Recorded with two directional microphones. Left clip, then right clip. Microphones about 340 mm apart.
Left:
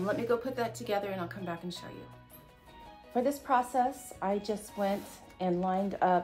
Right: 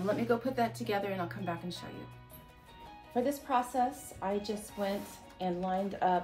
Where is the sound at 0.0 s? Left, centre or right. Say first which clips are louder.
Left 1 dB; centre.